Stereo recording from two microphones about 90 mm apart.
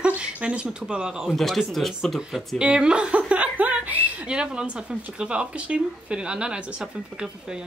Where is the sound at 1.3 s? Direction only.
Centre (ahead or behind).